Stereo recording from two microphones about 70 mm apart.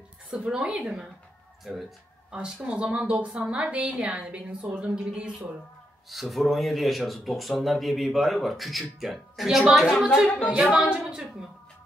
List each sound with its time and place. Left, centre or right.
0.3 s a woman's voice: centre
1.6 s speech: centre
2.3 s a woman's voice: centre
6.0 s speech: centre
10.4 s a woman's voice: centre